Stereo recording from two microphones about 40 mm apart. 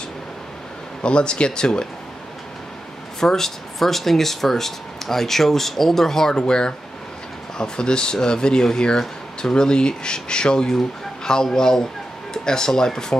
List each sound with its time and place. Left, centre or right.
1.0 s speech: left
3.2 s speech: centre